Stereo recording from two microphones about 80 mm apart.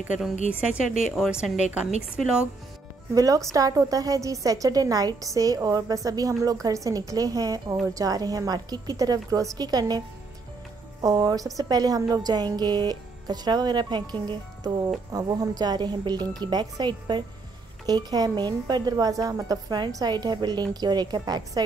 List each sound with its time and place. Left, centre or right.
0.5 s a woman's voice: centre
3.2 s a woman's voice: right
17.8 s a woman's voice: right